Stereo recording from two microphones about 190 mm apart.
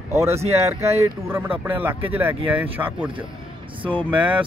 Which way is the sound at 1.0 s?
15° right (ahead or behind).